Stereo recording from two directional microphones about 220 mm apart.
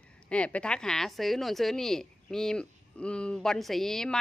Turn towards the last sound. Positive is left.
turn(degrees=0)  # may be behind; listen again after turning